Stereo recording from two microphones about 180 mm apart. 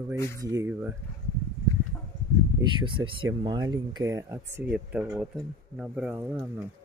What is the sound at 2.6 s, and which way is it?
Speech, 25° right (ahead or behind).